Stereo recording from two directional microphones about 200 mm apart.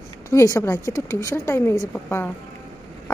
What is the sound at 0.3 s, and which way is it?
A woman's voice, 15° left (ahead or behind).